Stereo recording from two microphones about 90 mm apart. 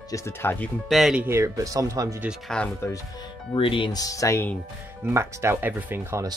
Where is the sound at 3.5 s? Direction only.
70° left (ahead or behind).